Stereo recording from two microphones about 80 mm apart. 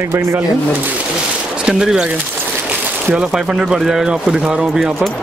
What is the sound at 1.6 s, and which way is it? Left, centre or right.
Speech, centre.